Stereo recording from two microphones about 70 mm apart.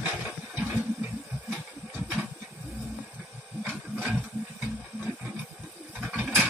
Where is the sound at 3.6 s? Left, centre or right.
Right.